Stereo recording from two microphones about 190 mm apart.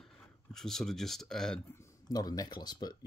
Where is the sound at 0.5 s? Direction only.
Centre (ahead or behind).